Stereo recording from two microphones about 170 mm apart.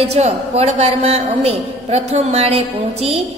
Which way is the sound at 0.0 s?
35° right (ahead or behind).